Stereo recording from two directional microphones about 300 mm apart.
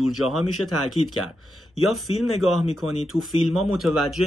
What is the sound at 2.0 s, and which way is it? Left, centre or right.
Speech, left.